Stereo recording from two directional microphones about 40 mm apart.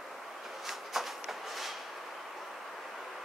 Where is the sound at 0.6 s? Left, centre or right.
Centre.